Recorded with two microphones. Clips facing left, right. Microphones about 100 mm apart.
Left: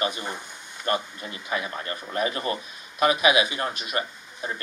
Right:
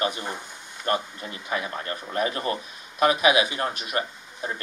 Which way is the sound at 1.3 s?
35° right (ahead or behind).